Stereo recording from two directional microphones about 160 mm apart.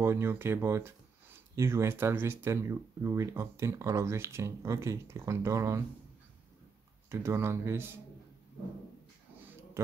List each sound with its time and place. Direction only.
0.0 s speech: 15° right (ahead or behind)
7.1 s speech: 15° right (ahead or behind)